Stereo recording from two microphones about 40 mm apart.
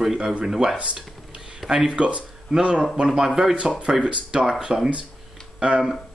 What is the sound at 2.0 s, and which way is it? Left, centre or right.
Speech, right.